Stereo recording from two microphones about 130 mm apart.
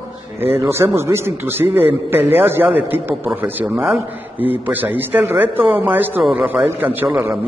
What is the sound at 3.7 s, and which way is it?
Speech, centre (ahead or behind).